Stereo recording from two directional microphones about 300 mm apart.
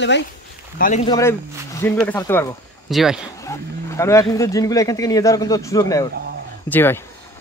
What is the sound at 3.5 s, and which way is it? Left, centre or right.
Speech, centre.